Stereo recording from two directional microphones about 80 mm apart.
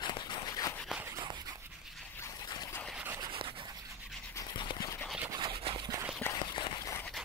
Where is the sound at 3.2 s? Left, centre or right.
Right.